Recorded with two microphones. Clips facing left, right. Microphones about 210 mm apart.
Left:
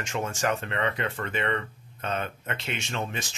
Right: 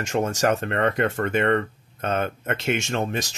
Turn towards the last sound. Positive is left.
turn(degrees=-40)  # may be behind; listen again after turning